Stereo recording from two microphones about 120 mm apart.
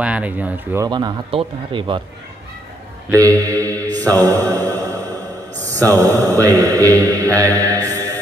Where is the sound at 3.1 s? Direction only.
30° right (ahead or behind).